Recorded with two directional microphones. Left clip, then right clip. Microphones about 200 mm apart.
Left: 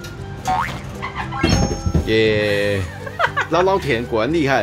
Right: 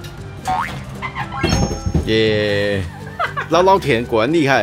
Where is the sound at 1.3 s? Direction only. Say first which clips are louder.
Left 1 dB; centre (ahead or behind).